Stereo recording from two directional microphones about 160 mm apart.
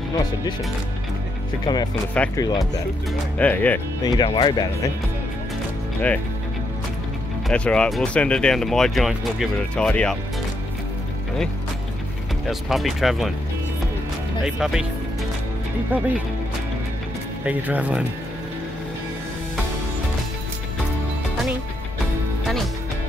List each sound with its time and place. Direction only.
1.7 s speech: 25° left (ahead or behind)
2.2 s speech: 10° left (ahead or behind)
3.3 s speech: 10° left (ahead or behind)
4.0 s speech: 25° left (ahead or behind)
7.4 s speech: 5° left (ahead or behind)
12.4 s speech: centre (ahead or behind)
14.4 s speech: 5° right (ahead or behind)
15.9 s speech: 10° right (ahead or behind)
17.5 s speech: 10° right (ahead or behind)